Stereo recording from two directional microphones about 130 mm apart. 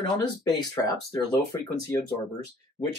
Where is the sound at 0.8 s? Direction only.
25° left (ahead or behind).